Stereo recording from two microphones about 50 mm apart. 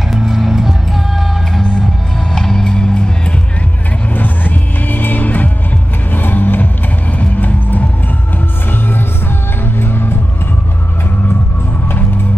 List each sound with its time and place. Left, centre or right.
0.1 s music: centre
4.1 s music: left
6.1 s vehicle: left
7.2 s music: left
9.8 s music: left